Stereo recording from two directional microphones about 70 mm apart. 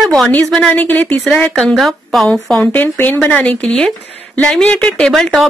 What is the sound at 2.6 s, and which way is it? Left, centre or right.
Speech, left.